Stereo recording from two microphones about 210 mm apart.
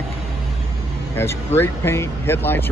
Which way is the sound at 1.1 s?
10° left (ahead or behind).